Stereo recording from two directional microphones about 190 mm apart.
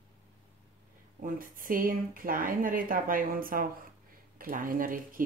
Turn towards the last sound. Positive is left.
turn(degrees=-45)  # may be behind; listen again after turning